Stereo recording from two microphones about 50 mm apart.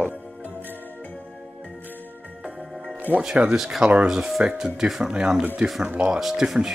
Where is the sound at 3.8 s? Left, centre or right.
Right.